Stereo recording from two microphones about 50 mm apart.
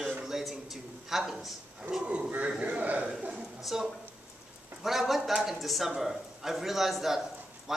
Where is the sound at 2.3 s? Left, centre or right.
Right.